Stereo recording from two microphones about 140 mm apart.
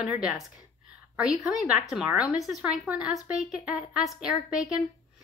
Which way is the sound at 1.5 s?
5° right (ahead or behind).